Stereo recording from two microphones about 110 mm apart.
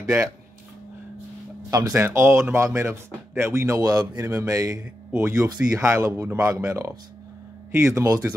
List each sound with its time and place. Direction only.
0.0 s speech: 20° right (ahead or behind)
1.7 s speech: 30° right (ahead or behind)